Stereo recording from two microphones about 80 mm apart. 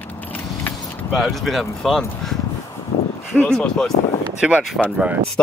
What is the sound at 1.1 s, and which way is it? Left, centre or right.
Speech, centre.